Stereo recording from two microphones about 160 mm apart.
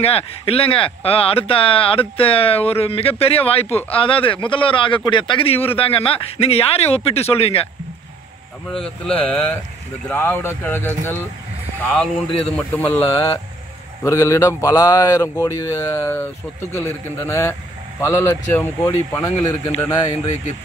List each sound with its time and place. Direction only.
0.0 s speech: 35° left (ahead or behind)
8.6 s a man's voice: 5° left (ahead or behind)
20.1 s speech: 45° left (ahead or behind)